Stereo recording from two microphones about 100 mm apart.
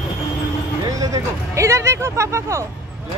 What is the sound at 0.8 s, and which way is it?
Speech, 35° right (ahead or behind).